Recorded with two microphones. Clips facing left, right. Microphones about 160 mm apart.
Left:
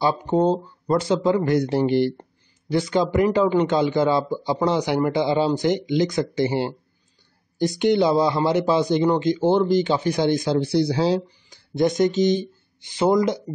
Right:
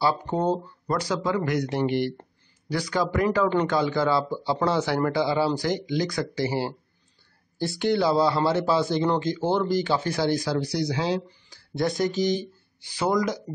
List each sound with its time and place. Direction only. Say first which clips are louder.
0.0 s a man's voice: left 4 dB; 20° left (ahead or behind)
11.2 s speech: right 1 dB; 20° left (ahead or behind)